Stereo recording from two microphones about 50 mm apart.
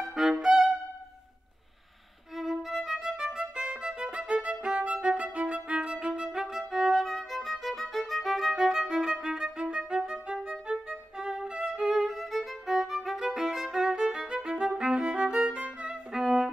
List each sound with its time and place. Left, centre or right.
0.1 s music: centre
2.3 s violin: centre
3.3 s violin: centre
14.8 s music: right
15.9 s violin: centre